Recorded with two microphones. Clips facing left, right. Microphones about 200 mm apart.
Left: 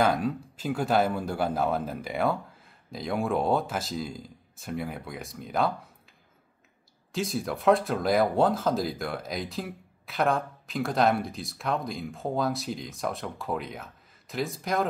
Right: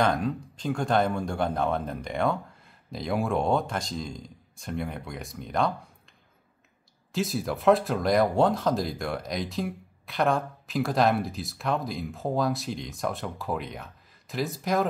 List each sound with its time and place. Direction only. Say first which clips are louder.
0.0 s speech: even; 5° left (ahead or behind)
7.1 s speech: right 1 dB; centre (ahead or behind)